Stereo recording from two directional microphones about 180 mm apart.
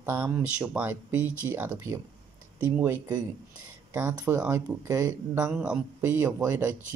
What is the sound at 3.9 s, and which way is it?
Speech, 10° right (ahead or behind).